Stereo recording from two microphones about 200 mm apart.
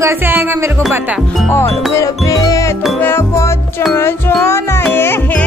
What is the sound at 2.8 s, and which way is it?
Speech, centre (ahead or behind).